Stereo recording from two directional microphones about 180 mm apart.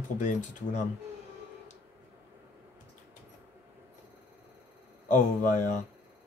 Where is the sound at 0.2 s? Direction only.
45° left (ahead or behind).